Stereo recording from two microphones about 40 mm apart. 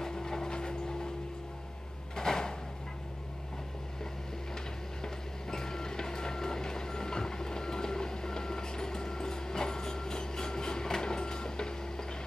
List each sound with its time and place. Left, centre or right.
0.0 s vehicle: centre
2.1 s a sound: centre
5.0 s vehicle: centre